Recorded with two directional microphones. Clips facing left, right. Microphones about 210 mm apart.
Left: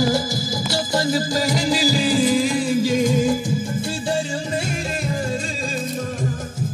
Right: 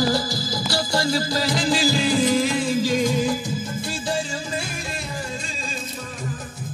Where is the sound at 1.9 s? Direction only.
5° left (ahead or behind).